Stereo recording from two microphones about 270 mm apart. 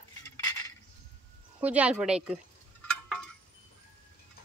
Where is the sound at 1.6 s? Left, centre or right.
Centre.